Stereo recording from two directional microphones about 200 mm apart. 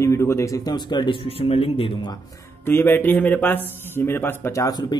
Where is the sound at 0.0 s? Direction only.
15° left (ahead or behind).